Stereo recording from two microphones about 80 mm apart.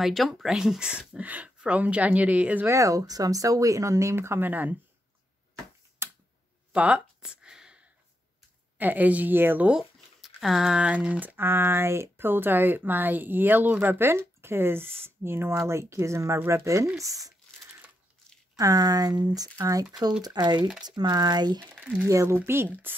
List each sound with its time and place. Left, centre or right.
0.0 s speech: centre
2.6 s speech: right
6.0 s a sound: right
6.7 s a sound: centre
8.7 s speech: right
9.7 s speech: centre; by 17.3 s right
18.6 s speech: right
19.6 s speech: right
20.2 s speech: right
21.5 s speech: right
22.0 s speech: right